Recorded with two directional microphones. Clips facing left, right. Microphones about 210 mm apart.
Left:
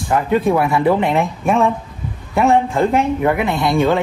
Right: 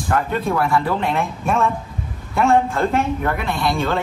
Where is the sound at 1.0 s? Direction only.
Centre (ahead or behind).